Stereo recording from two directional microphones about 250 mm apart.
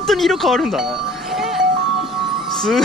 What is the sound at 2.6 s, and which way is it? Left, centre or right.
Speech, centre.